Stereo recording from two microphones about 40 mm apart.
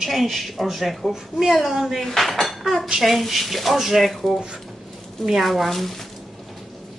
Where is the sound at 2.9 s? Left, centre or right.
Centre.